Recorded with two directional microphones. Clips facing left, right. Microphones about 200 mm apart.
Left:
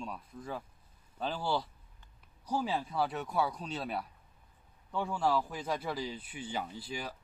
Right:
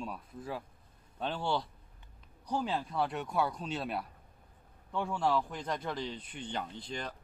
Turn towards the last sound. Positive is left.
turn(degrees=10)  # may be behind; listen again after turning